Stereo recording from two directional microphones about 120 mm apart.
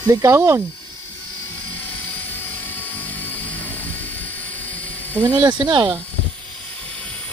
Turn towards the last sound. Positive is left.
turn(degrees=-40)  # may be behind; listen again after turning